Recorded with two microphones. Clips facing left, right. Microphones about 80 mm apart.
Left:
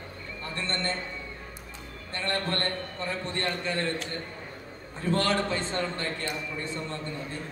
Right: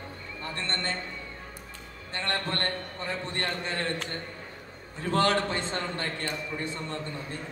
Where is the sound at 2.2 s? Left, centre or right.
Right.